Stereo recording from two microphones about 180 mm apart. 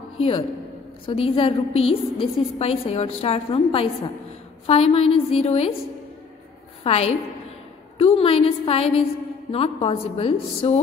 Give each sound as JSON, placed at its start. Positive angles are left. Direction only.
{"t": 1.0, "sound": "a woman's voice", "side_deg": 30}
{"t": 6.8, "sound": "a woman's voice", "side_deg": 35}